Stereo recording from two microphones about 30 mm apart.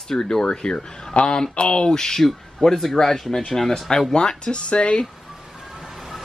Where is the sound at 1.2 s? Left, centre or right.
Left.